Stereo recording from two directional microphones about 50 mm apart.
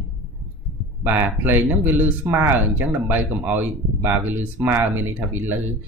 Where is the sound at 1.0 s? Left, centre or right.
Right.